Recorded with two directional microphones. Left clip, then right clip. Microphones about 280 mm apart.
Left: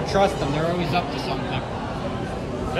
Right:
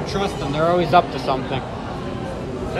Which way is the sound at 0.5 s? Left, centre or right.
Centre.